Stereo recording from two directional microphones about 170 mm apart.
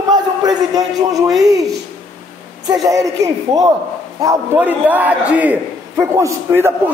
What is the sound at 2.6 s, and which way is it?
A man's voice, 20° right (ahead or behind).